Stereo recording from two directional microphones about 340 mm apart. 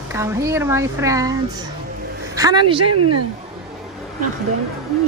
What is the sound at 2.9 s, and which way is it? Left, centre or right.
Speech, right.